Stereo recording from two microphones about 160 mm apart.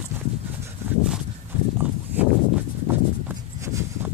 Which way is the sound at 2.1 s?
10° right (ahead or behind).